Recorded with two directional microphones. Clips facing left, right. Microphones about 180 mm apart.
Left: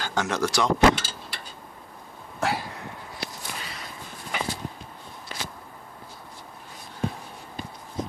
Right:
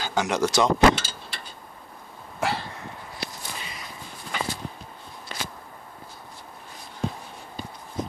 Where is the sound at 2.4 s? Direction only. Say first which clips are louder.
Even; 10° left (ahead or behind).